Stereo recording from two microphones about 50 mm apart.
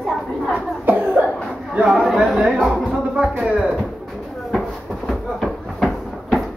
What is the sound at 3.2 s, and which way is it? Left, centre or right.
Speech, right.